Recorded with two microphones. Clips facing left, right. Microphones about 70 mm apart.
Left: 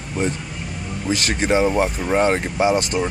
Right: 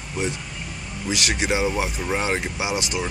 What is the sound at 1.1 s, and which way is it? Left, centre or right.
Speech, left.